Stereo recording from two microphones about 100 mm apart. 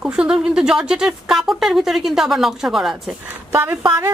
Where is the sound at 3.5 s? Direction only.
20° right (ahead or behind).